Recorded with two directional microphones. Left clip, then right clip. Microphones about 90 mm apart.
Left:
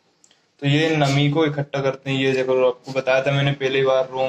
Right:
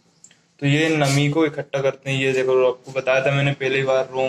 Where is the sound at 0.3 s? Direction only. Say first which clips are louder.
Even; 20° left (ahead or behind).